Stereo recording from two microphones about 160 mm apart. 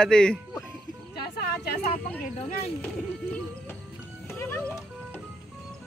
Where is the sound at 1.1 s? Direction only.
80° left.